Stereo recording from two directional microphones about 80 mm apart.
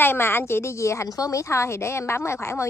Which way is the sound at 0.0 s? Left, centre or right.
Left.